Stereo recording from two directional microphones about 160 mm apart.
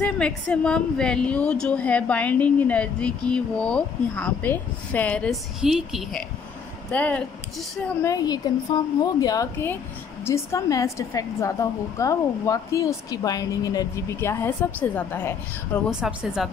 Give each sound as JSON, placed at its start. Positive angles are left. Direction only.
{"t": 0.0, "sound": "a woman's voice", "side_deg": 5}
{"t": 8.0, "sound": "speech", "side_deg": 20}
{"t": 15.9, "sound": "a woman's voice", "side_deg": -5}